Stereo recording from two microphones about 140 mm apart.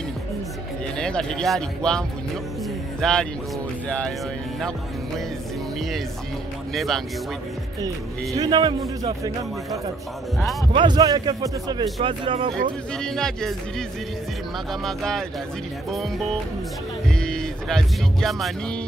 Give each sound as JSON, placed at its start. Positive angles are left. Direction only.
{"t": 0.9, "sound": "speech", "side_deg": 5}
{"t": 6.7, "sound": "speech", "side_deg": 0}
{"t": 8.4, "sound": "speech", "side_deg": -30}
{"t": 10.7, "sound": "a man's voice", "side_deg": -35}
{"t": 12.0, "sound": "speech", "side_deg": -40}
{"t": 12.9, "sound": "speech", "side_deg": 5}
{"t": 17.1, "sound": "music", "side_deg": 5}